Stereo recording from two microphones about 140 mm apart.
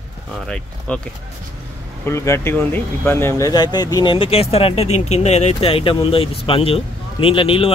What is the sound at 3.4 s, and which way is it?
Speech, 30° left (ahead or behind).